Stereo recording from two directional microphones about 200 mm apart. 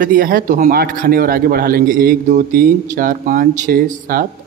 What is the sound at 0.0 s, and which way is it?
A man's voice, 45° right (ahead or behind).